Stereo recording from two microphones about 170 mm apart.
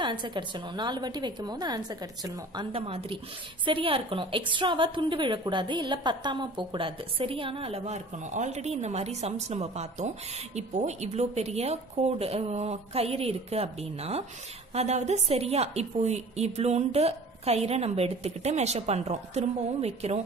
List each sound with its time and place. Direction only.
0.0 s a woman's voice: 25° right (ahead or behind)